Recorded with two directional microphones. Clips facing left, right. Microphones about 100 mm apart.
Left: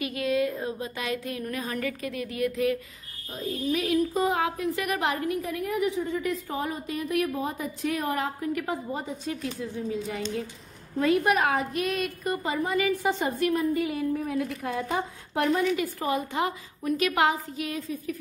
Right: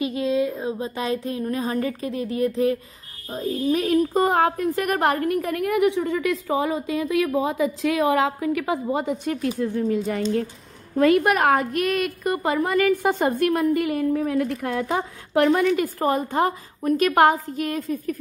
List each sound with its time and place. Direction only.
0.0 s a sound: 25° right (ahead or behind)
0.7 s a woman's voice: 30° right (ahead or behind); by 15.6 s 85° right
15.6 s a woman's voice: 45° right (ahead or behind)